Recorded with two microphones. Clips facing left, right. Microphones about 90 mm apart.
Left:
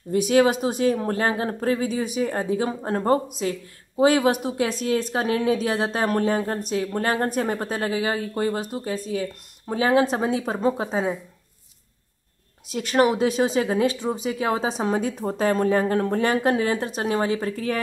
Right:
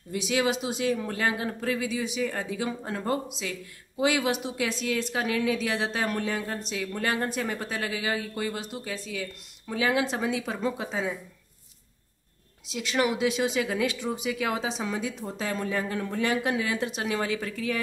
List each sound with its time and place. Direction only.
0.1 s speech: 45° left (ahead or behind)
12.6 s speech: 45° left (ahead or behind)